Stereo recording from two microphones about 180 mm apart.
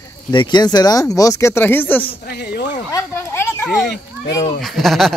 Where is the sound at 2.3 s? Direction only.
65° left (ahead or behind).